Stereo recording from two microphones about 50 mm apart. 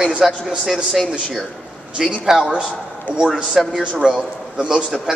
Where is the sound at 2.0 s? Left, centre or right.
Centre.